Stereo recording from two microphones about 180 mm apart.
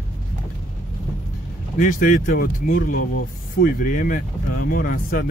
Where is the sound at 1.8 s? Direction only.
50° left (ahead or behind).